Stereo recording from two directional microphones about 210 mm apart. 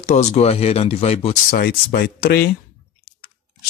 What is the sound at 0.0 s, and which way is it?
Speech, 35° left (ahead or behind).